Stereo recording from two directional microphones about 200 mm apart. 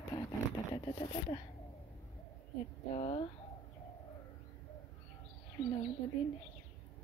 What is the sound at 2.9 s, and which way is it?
Speech, 30° left (ahead or behind).